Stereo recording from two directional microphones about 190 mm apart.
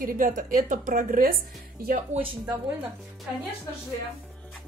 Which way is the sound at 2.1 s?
30° right (ahead or behind).